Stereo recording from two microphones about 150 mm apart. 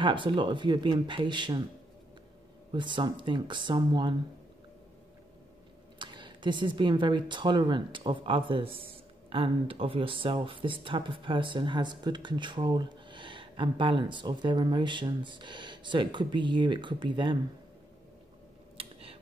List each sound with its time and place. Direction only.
0.0 s speech: 35° right (ahead or behind)
2.7 s speech: 30° right (ahead or behind)
5.9 s speech: 30° right (ahead or behind)
18.8 s tick-tock: 40° right (ahead or behind)